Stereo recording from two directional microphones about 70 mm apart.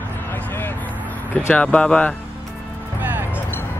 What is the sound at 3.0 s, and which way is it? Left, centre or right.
Music, right.